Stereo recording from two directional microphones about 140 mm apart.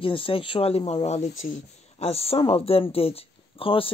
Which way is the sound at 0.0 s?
40° left (ahead or behind).